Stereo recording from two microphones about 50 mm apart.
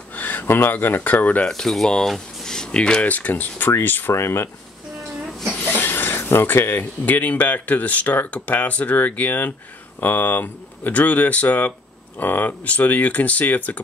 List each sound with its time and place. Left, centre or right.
0.1 s speech: left
1.5 s speech: centre
3.1 s speech: left
4.1 s speech: left
5.7 s speech: left